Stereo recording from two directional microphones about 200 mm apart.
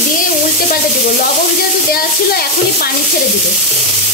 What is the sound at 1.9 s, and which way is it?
Speech, 50° left (ahead or behind).